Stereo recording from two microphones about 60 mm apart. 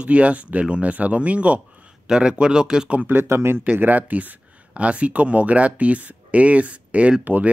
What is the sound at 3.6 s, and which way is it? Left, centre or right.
Speech, right.